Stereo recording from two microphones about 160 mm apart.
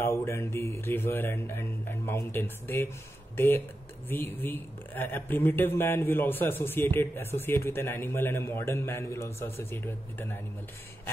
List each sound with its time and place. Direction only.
0.0 s speech: 15° left (ahead or behind)